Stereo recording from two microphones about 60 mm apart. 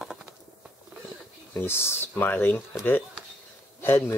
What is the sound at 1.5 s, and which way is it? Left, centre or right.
Speech, left.